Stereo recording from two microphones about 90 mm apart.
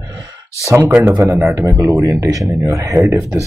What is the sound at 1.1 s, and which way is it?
Speech, 40° right (ahead or behind).